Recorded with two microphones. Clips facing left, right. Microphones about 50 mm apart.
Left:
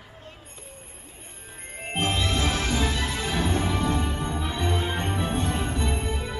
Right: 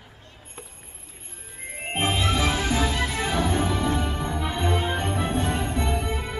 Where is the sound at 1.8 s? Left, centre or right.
Right.